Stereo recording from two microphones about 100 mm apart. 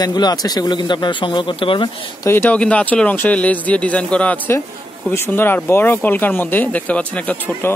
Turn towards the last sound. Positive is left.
turn(degrees=20)  # may be behind; listen again after turning